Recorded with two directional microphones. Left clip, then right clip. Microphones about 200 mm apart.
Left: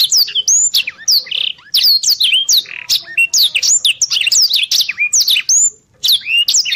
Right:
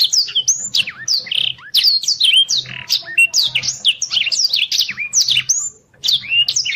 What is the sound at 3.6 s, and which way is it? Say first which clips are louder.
Bird: left 4 dB; 25° left (ahead or behind).